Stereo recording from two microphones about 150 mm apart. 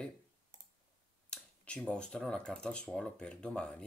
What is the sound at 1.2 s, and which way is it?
Speech, 5° left (ahead or behind).